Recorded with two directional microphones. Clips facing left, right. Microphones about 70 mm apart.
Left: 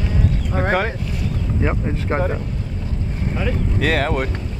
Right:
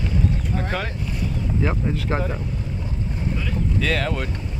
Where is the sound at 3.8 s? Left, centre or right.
Left.